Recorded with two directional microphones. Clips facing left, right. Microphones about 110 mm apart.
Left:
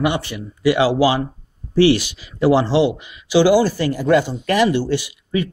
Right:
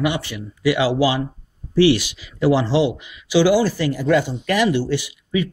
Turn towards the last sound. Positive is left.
turn(degrees=45)  # may be behind; listen again after turning